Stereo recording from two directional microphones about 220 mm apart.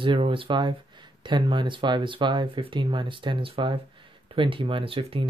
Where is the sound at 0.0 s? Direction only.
25° right (ahead or behind).